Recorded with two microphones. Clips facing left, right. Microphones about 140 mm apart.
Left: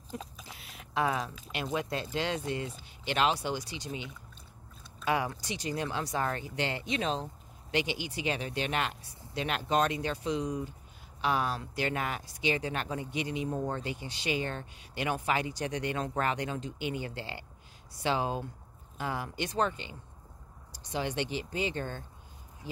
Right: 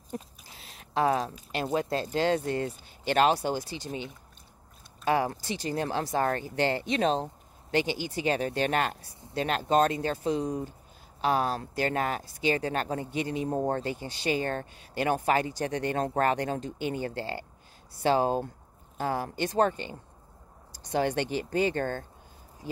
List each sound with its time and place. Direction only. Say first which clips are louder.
0.6 s speech: right 4 dB; 35° right (ahead or behind)
5.0 s speech: right 4 dB; 35° right (ahead or behind); by 22.0 s 50° right (ahead or behind)